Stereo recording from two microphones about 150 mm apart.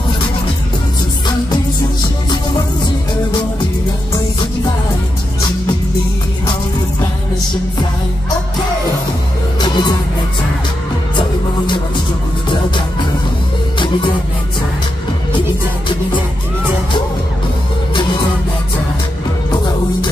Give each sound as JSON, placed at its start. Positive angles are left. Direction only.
{"t": 9.6, "sound": "music", "side_deg": 30}
{"t": 11.1, "sound": "music", "side_deg": 30}
{"t": 19.5, "sound": "music", "side_deg": 30}